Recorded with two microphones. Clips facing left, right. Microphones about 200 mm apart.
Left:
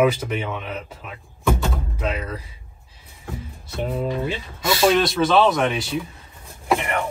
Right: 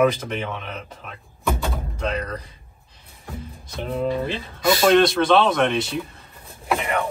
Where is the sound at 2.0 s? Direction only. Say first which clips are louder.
Right 2 dB; 5° left (ahead or behind).